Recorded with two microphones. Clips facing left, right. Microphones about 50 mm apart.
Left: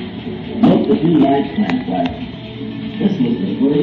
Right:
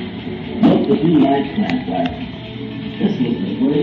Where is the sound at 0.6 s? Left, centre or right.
Centre.